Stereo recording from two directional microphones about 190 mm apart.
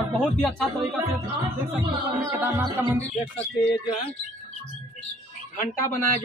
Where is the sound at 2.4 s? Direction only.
15° right (ahead or behind).